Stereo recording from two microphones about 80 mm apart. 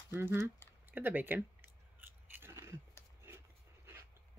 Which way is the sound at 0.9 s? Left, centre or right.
Right.